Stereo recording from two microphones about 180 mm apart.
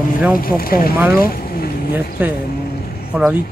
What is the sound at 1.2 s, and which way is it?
Vehicle, 55° left (ahead or behind).